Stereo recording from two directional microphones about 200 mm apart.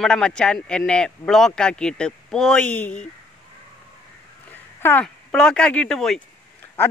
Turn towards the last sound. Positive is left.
turn(degrees=5)  # may be behind; listen again after turning